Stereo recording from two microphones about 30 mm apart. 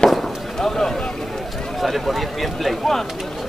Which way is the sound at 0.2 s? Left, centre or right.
Centre.